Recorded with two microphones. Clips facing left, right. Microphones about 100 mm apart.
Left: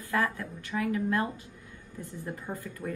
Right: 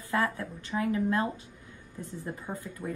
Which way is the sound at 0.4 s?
30° right (ahead or behind).